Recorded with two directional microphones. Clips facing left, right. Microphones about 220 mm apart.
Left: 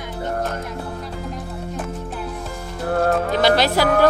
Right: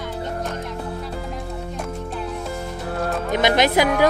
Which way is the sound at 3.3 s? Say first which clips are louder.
Left 1 dB; 20° right (ahead or behind).